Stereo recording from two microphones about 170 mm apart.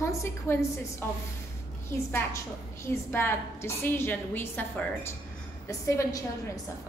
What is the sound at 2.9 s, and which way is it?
A woman's voice, 15° left (ahead or behind).